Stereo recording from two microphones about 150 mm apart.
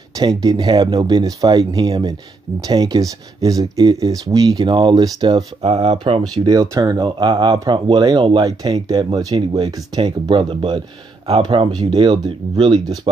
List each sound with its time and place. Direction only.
0.2 s speech: 25° right (ahead or behind)
5.6 s speech: 45° right (ahead or behind)
6.2 s speech: 25° right (ahead or behind)